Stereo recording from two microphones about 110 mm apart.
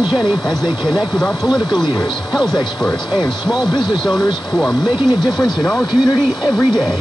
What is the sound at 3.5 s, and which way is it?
Speech, 40° left (ahead or behind).